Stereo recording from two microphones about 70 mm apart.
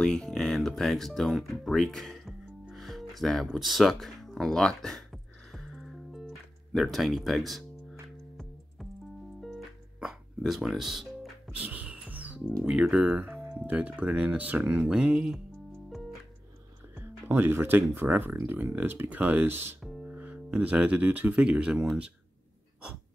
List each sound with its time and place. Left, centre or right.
0.0 s speech: centre
2.7 s music: centre
10.4 s speech: centre
11.6 s music: centre
12.6 s speech: centre
13.0 s speech: centre
14.9 s speech: centre
16.9 s speech: right
19.8 s music: centre
20.2 s speech: right